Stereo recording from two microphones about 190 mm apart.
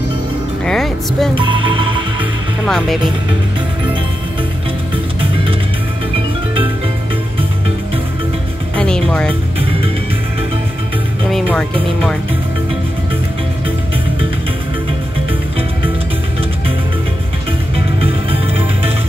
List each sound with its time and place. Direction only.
0.7 s speech: centre (ahead or behind)
1.3 s speech: 25° right (ahead or behind)
2.6 s speech: centre (ahead or behind)
8.7 s music: 5° left (ahead or behind)
9.6 s music: 30° right (ahead or behind)
11.2 s music: centre (ahead or behind)